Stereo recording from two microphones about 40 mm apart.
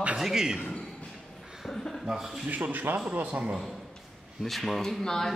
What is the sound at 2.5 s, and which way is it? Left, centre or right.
Speech, right.